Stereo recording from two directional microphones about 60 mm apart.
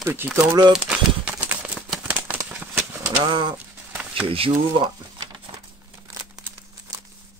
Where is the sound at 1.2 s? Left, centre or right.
Right.